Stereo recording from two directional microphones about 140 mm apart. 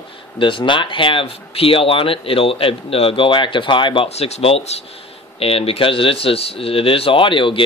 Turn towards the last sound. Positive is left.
turn(degrees=35)  # may be behind; listen again after turning